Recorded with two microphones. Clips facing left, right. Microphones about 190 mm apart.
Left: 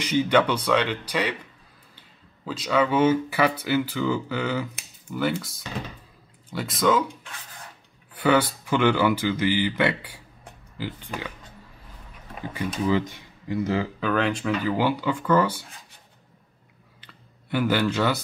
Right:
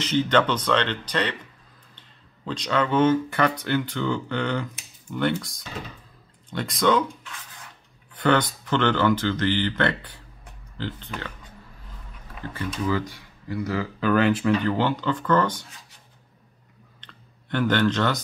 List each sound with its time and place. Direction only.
0.0 s speech: 10° left (ahead or behind)
8.1 s speech: 10° left (ahead or behind)
12.5 s speech: 20° left (ahead or behind)
13.9 s speech: centre (ahead or behind)
17.0 s clicking: 5° left (ahead or behind)